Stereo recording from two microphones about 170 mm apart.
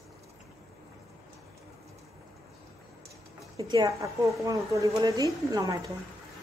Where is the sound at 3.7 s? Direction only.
20° right (ahead or behind).